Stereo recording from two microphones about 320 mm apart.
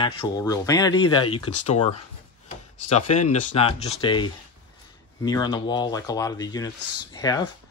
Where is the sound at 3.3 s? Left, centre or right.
Centre.